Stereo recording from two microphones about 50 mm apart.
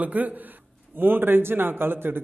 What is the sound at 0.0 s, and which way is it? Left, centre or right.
A man's voice, right.